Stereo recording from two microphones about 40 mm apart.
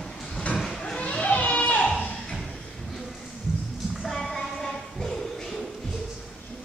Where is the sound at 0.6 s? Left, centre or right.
Centre.